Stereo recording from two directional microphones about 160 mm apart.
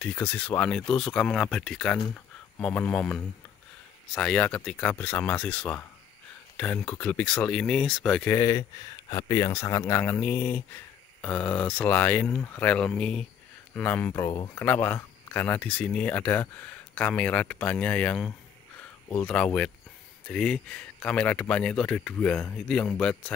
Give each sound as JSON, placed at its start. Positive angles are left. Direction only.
{"t": 0.0, "sound": "speech", "side_deg": 10}
{"t": 8.4, "sound": "speech", "side_deg": 20}